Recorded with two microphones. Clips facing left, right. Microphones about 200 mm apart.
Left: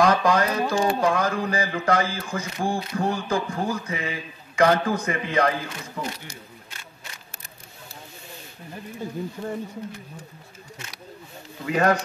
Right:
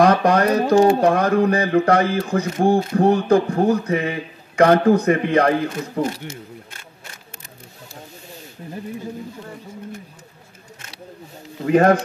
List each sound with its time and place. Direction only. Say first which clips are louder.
0.0 s speech: right 5 dB; 60° right (ahead or behind)
11.6 s speech: right 7 dB; 50° right (ahead or behind)